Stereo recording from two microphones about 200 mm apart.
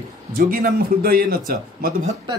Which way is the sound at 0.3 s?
50° right (ahead or behind).